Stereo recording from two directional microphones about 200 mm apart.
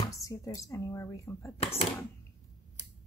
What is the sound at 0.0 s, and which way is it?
Speech, 15° left (ahead or behind).